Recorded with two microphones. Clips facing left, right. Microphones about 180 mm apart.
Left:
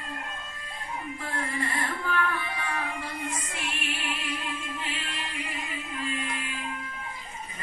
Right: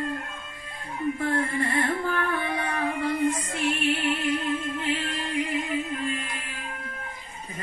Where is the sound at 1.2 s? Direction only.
55° right (ahead or behind).